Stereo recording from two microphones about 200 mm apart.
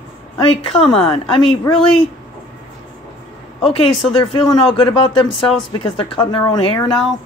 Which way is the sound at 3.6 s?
30° left (ahead or behind).